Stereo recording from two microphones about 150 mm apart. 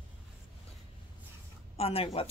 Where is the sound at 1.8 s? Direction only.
40° left (ahead or behind).